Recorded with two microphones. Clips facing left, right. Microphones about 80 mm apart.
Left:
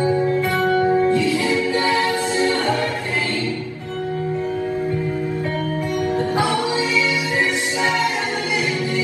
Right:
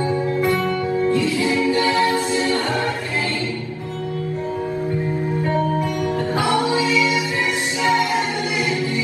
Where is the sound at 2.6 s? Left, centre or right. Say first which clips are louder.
Left 1 dB; right.